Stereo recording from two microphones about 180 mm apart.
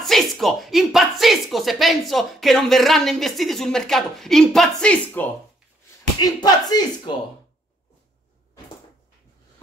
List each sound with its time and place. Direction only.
0.0 s speech: centre (ahead or behind)
6.1 s speech: 20° left (ahead or behind)